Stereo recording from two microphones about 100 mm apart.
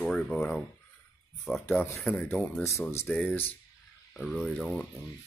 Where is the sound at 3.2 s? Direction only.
15° left (ahead or behind).